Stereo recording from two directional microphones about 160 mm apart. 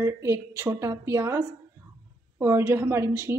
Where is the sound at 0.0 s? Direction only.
20° right (ahead or behind).